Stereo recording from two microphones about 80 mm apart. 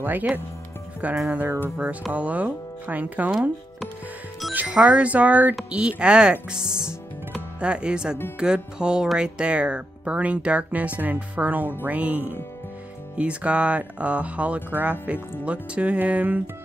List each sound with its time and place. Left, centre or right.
0.0 s speech: right
3.3 s speech: centre
4.6 s speech: centre